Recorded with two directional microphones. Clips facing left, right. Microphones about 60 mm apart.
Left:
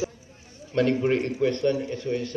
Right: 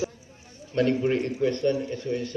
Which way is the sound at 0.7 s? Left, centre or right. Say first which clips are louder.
Left 1 dB; left.